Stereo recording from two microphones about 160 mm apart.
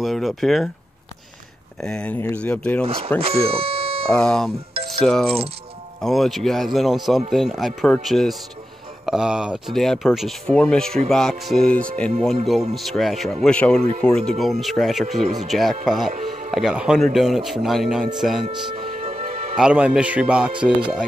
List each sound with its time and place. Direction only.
0.0 s speech: centre (ahead or behind)
1.8 s speech: 5° left (ahead or behind)
2.8 s speech: 35° right (ahead or behind)
4.1 s speech: 5° left (ahead or behind)
18.9 s music: 45° right (ahead or behind)
19.5 s a man's voice: 5° right (ahead or behind)